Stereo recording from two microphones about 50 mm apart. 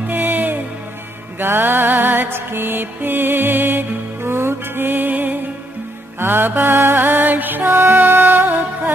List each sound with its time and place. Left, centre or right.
0.1 s music: right